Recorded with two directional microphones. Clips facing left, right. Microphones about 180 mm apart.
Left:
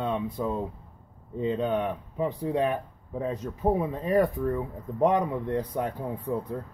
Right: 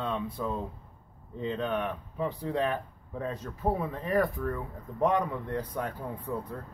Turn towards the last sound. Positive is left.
turn(degrees=20)  # may be behind; listen again after turning